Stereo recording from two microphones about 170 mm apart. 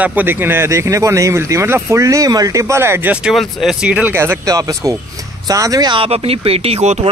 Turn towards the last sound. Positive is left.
turn(degrees=-35)  # may be behind; listen again after turning